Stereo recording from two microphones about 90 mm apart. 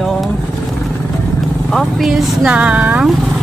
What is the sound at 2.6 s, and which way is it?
Speech, 15° right (ahead or behind).